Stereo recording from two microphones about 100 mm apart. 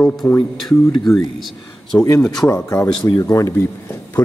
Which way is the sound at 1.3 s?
Centre (ahead or behind).